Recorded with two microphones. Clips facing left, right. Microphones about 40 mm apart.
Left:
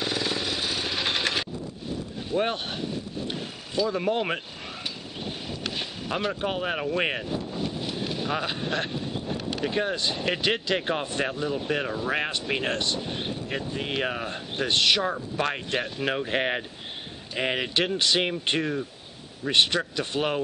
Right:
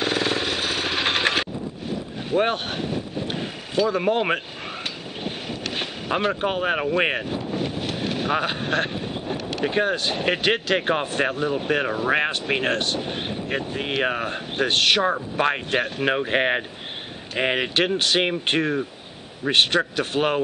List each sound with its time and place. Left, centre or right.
0.0 s jackhammer: right
2.3 s vehicle: right
3.9 s speech: right
5.2 s boat: right
9.9 s speech: right